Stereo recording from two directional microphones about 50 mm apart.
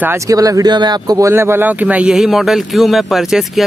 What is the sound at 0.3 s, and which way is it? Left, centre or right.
Speech, right.